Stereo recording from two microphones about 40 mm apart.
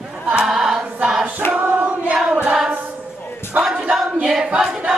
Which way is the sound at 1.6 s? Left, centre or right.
Right.